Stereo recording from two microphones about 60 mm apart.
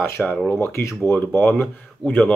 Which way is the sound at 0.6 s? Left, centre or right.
Left.